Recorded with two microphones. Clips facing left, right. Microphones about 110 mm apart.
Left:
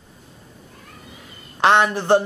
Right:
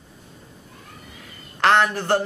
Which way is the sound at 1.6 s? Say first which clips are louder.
Left 2 dB; 20° left (ahead or behind).